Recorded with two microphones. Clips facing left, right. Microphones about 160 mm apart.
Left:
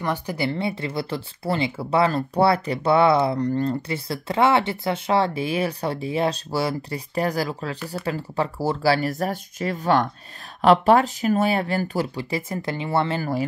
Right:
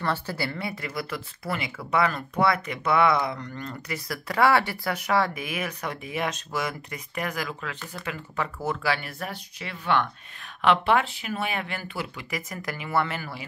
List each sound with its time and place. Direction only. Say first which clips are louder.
0.0 s speech: left 4 dB; 15° left (ahead or behind)